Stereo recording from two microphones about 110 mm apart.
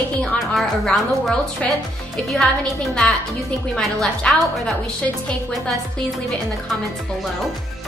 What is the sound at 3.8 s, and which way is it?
Music, 5° left (ahead or behind).